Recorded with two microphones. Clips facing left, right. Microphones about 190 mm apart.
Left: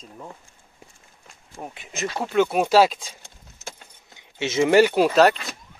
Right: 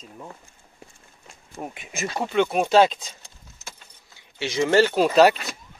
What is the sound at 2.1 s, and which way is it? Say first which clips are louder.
Speech: left 1 dB; centre (ahead or behind).